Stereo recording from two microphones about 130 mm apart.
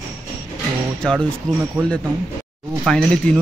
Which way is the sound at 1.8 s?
20° right (ahead or behind).